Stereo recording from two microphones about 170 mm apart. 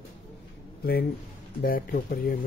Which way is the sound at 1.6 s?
55° left (ahead or behind).